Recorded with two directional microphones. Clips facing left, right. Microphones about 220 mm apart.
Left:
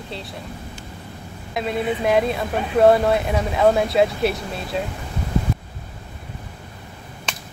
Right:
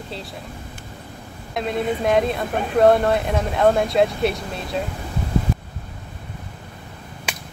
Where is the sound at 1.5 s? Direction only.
Centre (ahead or behind).